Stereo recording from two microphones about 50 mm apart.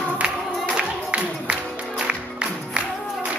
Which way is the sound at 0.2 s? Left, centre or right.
Right.